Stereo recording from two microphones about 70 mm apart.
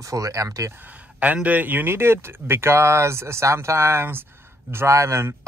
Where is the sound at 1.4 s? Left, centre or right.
Right.